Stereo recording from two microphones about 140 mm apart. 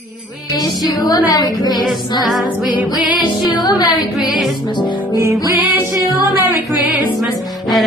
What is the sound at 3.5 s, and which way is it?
Speech, 30° left (ahead or behind).